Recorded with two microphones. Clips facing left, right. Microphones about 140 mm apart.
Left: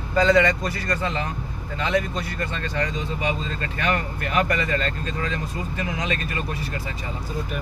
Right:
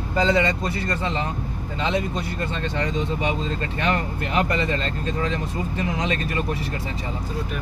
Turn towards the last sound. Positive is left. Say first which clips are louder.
# right 3 dB
turn(degrees=-30)  # may be behind; listen again after turning